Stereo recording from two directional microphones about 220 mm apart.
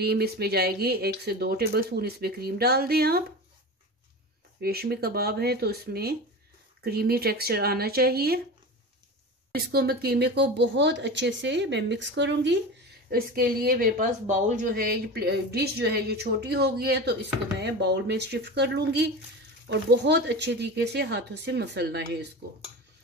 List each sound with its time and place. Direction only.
0.0 s speech: 45° right (ahead or behind)
4.6 s speech: 45° right (ahead or behind)
9.5 s speech: 45° right (ahead or behind)